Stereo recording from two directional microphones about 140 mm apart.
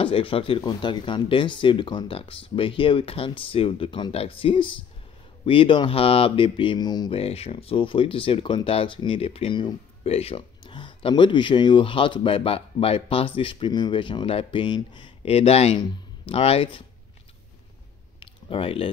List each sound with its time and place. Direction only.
0.0 s speech: 40° left (ahead or behind)
7.2 s speech: 45° left (ahead or behind)
18.2 s a sound: 40° left (ahead or behind)